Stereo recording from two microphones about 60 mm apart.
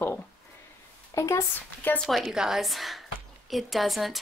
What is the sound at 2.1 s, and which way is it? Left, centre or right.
A woman's voice, centre.